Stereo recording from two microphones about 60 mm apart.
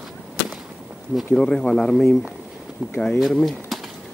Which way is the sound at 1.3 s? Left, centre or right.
Centre.